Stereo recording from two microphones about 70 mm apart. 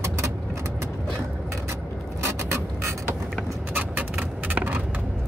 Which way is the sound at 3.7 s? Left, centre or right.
Right.